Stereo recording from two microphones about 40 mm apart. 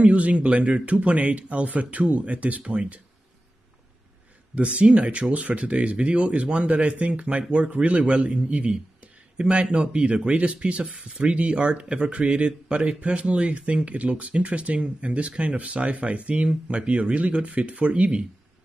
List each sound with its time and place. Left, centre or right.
0.0 s speech: right
4.6 s speech: right